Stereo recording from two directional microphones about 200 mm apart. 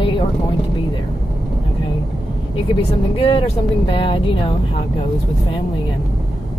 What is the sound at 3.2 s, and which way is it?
Speech, 25° left (ahead or behind).